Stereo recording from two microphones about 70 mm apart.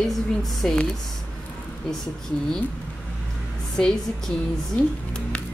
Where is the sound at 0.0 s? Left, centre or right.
Centre.